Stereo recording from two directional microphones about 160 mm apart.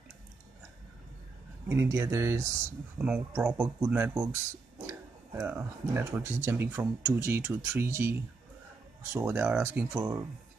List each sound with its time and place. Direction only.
1.7 s speech: 15° right (ahead or behind)